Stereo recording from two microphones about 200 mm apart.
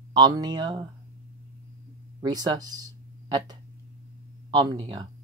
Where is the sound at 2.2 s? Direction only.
20° right (ahead or behind).